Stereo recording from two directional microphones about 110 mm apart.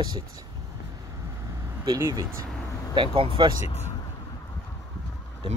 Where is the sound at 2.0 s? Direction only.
25° right (ahead or behind).